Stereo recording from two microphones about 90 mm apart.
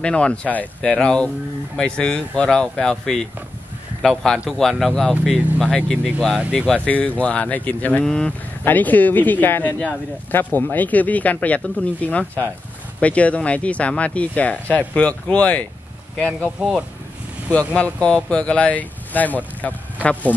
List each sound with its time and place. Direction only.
0.0 s speech: 10° left (ahead or behind)
8.6 s speech: 20° left (ahead or behind)
17.5 s speech: 15° left (ahead or behind)